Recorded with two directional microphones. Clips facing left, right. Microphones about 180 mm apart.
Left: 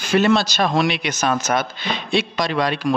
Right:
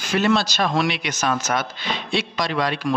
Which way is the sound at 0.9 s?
55° left (ahead or behind).